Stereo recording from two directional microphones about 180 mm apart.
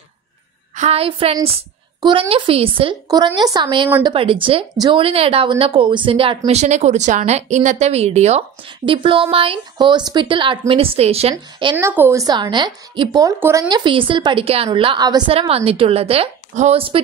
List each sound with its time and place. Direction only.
0.7 s a woman's voice: 35° right (ahead or behind)
11.7 s a woman's voice: 10° right (ahead or behind); by 17.0 s 30° right (ahead or behind)